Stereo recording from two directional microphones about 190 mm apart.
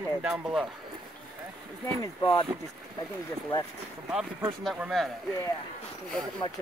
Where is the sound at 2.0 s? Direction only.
20° left (ahead or behind).